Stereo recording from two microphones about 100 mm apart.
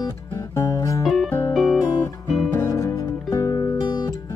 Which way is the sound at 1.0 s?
Centre (ahead or behind).